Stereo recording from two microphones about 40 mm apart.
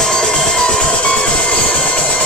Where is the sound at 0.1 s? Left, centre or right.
Centre.